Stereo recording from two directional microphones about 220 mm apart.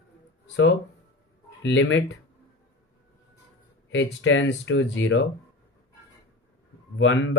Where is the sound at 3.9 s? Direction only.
60° left (ahead or behind).